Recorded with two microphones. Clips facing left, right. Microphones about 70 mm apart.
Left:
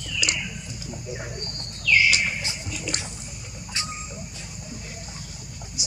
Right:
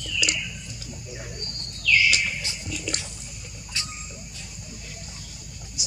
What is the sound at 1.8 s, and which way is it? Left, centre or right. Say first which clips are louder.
Bird: left 1 dB; left.